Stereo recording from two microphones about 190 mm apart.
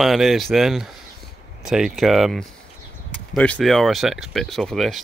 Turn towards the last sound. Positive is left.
turn(degrees=0)  # may be behind; listen again after turning